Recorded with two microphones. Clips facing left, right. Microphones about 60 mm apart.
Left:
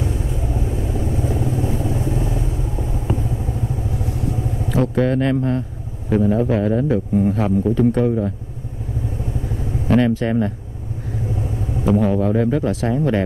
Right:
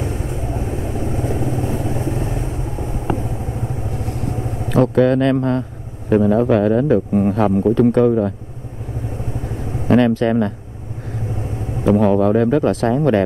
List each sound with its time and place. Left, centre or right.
0.0 s vehicle: right
4.0 s speech: right
9.9 s speech: right
12.0 s speech: right